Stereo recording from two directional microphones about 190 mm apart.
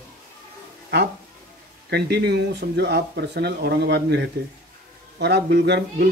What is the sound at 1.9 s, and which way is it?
Speech, 60° right (ahead or behind).